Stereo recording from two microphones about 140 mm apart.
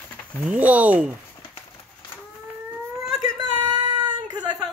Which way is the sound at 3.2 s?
30° right (ahead or behind).